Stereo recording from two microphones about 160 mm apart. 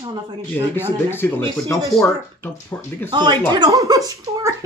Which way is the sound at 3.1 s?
30° right (ahead or behind).